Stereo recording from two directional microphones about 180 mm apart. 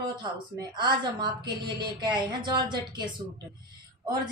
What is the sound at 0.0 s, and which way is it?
Speech, 25° right (ahead or behind).